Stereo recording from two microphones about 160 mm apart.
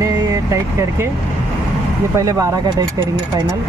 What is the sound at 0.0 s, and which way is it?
Vehicle, 20° right (ahead or behind).